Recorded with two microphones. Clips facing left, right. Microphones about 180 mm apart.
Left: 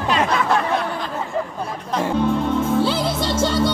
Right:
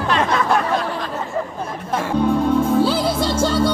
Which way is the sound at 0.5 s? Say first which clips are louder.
Right 1 dB; centre (ahead or behind).